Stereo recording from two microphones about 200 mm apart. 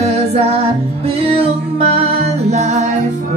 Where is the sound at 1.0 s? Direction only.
30° right (ahead or behind).